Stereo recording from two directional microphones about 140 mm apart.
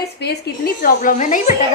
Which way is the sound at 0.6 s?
80° left.